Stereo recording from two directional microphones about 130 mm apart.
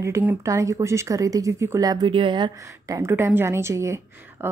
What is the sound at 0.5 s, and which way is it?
A woman's voice, 25° right (ahead or behind).